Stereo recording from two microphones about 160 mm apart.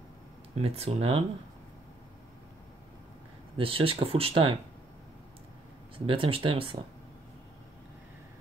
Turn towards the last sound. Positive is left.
turn(degrees=-35)  # may be behind; listen again after turning